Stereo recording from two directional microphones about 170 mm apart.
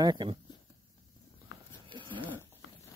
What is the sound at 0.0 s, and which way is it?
Speech, 25° right (ahead or behind).